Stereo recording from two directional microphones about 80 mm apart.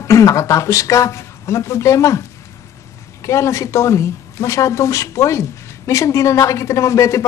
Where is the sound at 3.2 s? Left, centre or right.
Left.